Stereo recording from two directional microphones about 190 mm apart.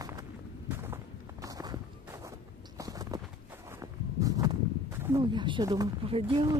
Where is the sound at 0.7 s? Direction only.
10° right (ahead or behind).